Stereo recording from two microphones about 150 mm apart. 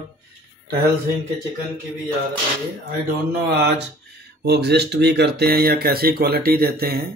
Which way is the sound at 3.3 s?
90° right.